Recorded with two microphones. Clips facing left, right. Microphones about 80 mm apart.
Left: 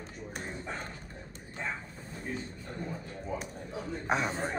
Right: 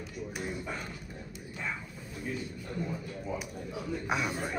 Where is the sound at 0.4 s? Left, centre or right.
Left.